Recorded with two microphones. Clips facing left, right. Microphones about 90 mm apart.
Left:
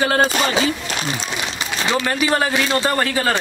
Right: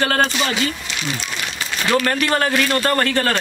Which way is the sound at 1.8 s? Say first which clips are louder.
Right 2 dB; 20° left (ahead or behind).